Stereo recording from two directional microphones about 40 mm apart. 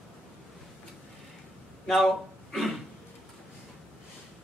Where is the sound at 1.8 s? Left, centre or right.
Centre.